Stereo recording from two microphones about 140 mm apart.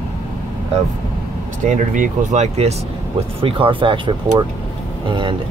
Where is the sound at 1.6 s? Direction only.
60° right (ahead or behind).